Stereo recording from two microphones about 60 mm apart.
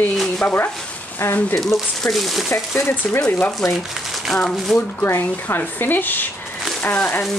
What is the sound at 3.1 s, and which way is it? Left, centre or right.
Speech, left.